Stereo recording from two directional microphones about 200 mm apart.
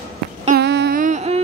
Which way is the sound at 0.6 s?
55° right (ahead or behind).